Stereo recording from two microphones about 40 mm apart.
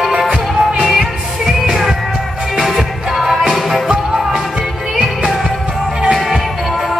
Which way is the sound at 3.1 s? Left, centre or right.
Centre.